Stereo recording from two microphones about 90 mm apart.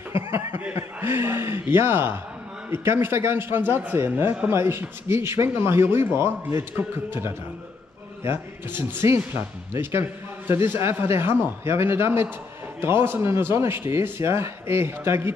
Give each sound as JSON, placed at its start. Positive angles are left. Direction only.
{"t": 0.1, "sound": "speech", "side_deg": -30}